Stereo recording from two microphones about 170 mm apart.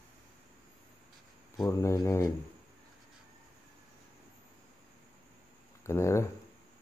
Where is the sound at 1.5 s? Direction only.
20° left (ahead or behind).